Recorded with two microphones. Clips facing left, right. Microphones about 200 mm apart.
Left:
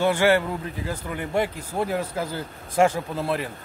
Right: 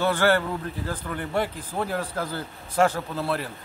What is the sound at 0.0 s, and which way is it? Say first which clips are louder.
Speech: left 2 dB; 10° left (ahead or behind).